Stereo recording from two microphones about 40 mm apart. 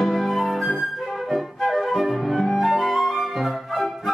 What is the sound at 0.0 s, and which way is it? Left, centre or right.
Flute, centre.